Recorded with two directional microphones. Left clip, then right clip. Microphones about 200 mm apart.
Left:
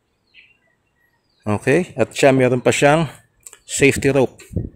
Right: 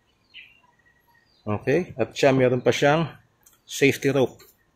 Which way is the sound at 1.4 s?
45° left (ahead or behind).